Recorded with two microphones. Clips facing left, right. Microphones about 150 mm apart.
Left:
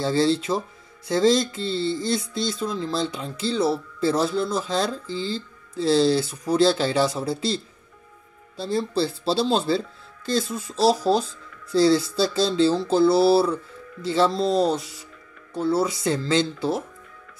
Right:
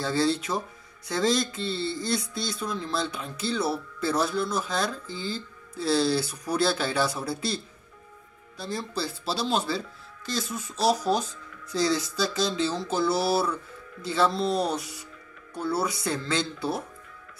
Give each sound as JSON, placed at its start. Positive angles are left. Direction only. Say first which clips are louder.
{"t": 0.0, "sound": "speech", "louder": "left 4 dB", "side_deg": 25}